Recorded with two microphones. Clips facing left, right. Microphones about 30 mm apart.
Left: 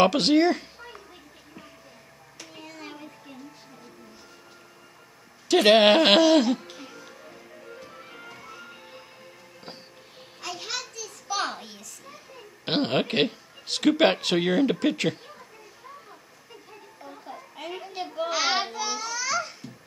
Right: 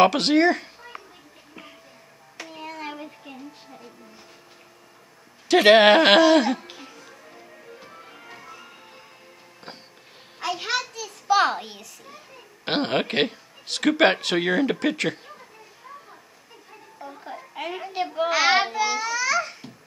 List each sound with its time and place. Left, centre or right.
0.0 s speech: centre
2.3 s hands: centre
2.7 s music: right
5.5 s a sound: centre
6.4 s babbling: centre
7.2 s music: centre
7.9 s music: centre
10.4 s a sound: right
12.6 s speech: centre
17.2 s a sound: right; by 19.5 s centre